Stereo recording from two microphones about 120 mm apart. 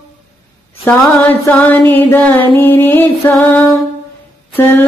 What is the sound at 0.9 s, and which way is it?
Music, 15° left (ahead or behind).